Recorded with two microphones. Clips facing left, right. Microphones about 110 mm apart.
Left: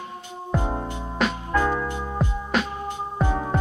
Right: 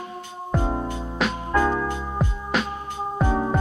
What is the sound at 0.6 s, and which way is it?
Music, 20° left (ahead or behind).